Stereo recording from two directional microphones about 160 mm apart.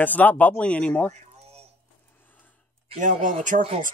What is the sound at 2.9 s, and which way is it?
Speech, 50° right (ahead or behind).